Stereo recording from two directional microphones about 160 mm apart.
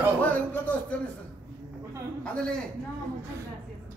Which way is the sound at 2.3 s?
5° left (ahead or behind).